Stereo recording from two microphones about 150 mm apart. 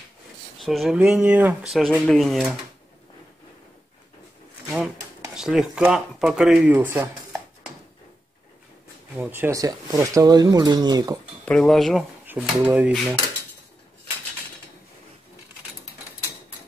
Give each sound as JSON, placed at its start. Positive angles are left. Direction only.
{"t": 0.6, "sound": "speech", "side_deg": 0}
{"t": 1.7, "sound": "speech", "side_deg": 0}
{"t": 4.6, "sound": "a sound", "side_deg": -5}
{"t": 5.3, "sound": "speech", "side_deg": -5}
{"t": 9.2, "sound": "speech", "side_deg": -15}
{"t": 11.4, "sound": "speech", "side_deg": 5}
{"t": 12.3, "sound": "speech", "side_deg": -10}